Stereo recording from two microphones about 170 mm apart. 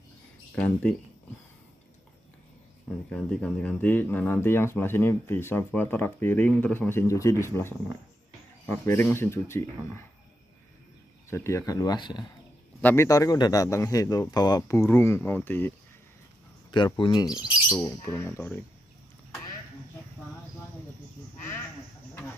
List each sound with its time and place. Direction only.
0.6 s speech: 10° left (ahead or behind)
3.1 s speech: 5° left (ahead or behind)
11.2 s speech: 15° left (ahead or behind)
12.8 s speech: 15° left (ahead or behind)
16.7 s speech: 30° left (ahead or behind)
17.6 s speech: 15° left (ahead or behind)